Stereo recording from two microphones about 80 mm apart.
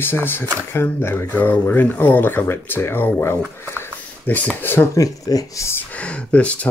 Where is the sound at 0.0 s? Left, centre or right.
Left.